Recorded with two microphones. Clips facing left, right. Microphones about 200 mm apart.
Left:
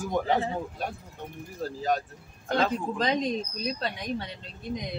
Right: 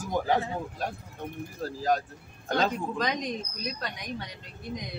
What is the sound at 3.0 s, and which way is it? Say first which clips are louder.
Speech: left 5 dB; 30° left (ahead or behind).